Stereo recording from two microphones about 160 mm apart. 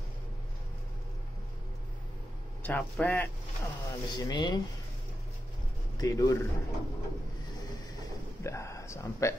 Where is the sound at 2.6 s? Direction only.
10° left (ahead or behind).